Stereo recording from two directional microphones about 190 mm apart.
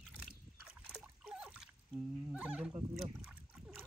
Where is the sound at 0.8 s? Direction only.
5° right (ahead or behind).